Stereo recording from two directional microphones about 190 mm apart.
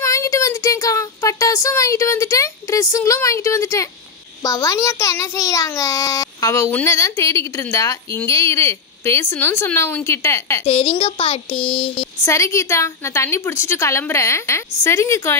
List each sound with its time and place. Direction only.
0.0 s a child's voice: 15° left (ahead or behind)
10.6 s speech: 30° left (ahead or behind)
12.3 s a child's voice: 15° left (ahead or behind)